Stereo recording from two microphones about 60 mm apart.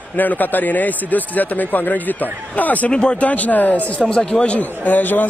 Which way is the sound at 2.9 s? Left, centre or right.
Centre.